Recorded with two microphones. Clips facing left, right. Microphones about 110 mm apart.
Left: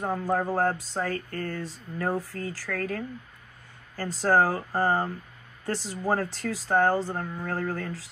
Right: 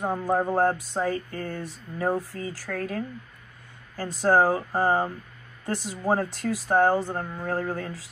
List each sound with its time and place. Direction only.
0.0 s speech: 15° right (ahead or behind)
2.8 s speech: 5° right (ahead or behind)